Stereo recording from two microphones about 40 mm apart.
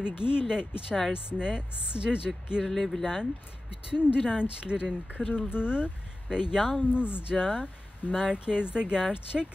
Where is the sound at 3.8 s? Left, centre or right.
Right.